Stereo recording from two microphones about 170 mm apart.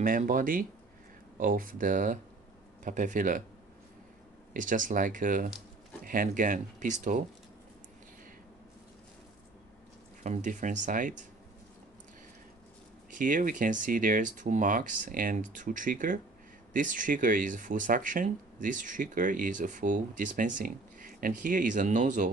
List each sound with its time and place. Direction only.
0.0 s speech: 55° right (ahead or behind)
4.6 s speech: 50° right (ahead or behind)
10.2 s speech: 45° right (ahead or behind)
13.2 s speech: 50° right (ahead or behind)